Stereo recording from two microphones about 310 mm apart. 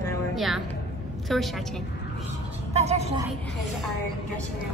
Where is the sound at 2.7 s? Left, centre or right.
Right.